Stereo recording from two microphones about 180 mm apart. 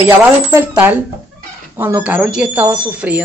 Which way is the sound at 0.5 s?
10° right (ahead or behind).